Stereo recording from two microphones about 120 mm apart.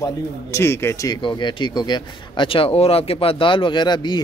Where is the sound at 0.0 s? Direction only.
25° left (ahead or behind).